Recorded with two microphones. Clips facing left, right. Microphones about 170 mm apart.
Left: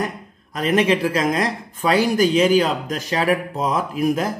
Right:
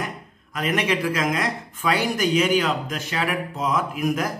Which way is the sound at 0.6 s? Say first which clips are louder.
Left 5 dB; 30° left (ahead or behind).